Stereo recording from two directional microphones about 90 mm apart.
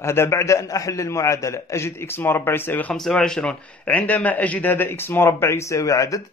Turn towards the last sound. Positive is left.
turn(degrees=40)  # may be behind; listen again after turning